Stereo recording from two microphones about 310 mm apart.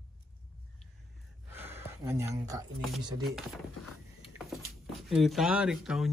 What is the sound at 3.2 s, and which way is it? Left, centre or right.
Speech, centre.